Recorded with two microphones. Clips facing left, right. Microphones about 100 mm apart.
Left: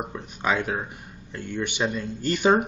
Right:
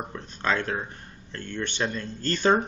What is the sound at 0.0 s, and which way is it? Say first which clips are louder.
Speech: left 2 dB; 10° left (ahead or behind).